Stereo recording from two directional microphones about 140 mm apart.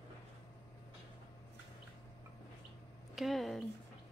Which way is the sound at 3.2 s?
Centre (ahead or behind).